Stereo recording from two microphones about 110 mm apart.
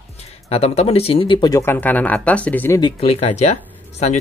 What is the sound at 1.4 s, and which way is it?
Speech, 35° left (ahead or behind).